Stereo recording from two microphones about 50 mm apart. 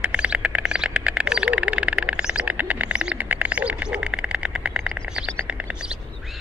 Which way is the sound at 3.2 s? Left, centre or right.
Right.